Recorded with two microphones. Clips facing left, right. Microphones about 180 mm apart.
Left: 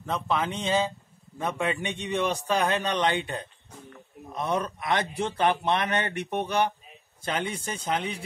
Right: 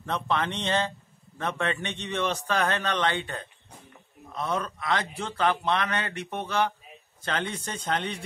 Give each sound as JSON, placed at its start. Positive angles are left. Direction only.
{"t": 0.0, "sound": "speech", "side_deg": 5}